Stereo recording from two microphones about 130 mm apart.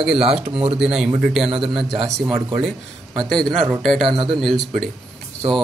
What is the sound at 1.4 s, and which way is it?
Speech, 40° right (ahead or behind).